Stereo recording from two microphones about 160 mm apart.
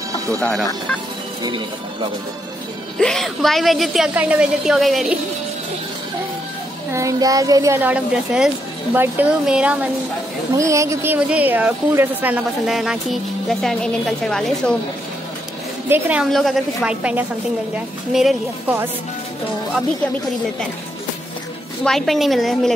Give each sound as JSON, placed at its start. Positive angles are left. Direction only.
{"t": 0.4, "sound": "a woman's voice", "side_deg": 0}
{"t": 3.0, "sound": "a woman's voice", "side_deg": 5}
{"t": 6.9, "sound": "a woman's voice", "side_deg": -20}
{"t": 10.6, "sound": "speech", "side_deg": -20}
{"t": 15.9, "sound": "a woman's voice", "side_deg": -10}
{"t": 21.8, "sound": "a woman's voice", "side_deg": 0}